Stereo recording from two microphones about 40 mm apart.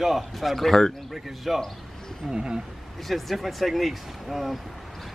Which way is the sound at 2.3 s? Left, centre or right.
Right.